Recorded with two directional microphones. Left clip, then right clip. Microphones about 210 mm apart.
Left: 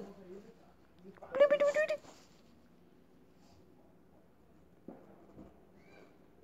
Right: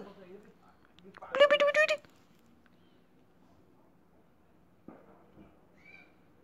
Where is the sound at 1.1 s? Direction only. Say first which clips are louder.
Right 3 dB; 5° left (ahead or behind).